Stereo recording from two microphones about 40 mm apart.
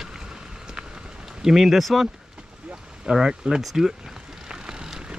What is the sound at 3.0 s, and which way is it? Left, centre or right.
Speech, centre.